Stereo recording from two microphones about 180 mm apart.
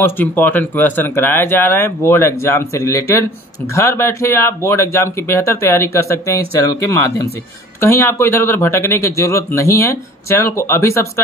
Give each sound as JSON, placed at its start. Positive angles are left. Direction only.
{"t": 0.0, "sound": "speech", "side_deg": 10}